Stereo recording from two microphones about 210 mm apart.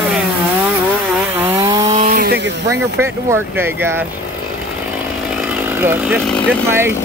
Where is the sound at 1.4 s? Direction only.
15° right (ahead or behind).